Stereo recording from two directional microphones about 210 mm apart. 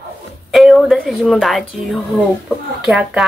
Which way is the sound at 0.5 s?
Centre (ahead or behind).